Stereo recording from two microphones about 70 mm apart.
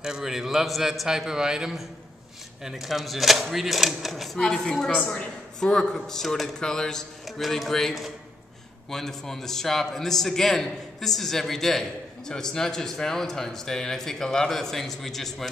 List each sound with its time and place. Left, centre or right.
0.0 s a man's voice: centre